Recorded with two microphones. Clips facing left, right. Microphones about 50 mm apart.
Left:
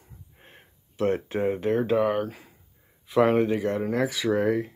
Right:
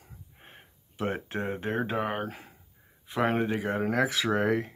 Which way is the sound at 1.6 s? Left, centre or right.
Right.